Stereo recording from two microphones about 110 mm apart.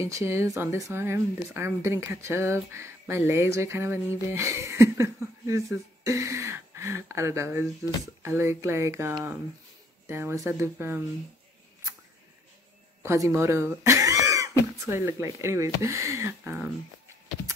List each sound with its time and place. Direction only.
0.0 s speech: 25° right (ahead or behind)
13.0 s speech: 25° right (ahead or behind)